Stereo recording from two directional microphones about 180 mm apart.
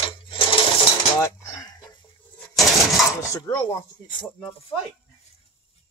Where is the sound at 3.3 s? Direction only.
15° left (ahead or behind).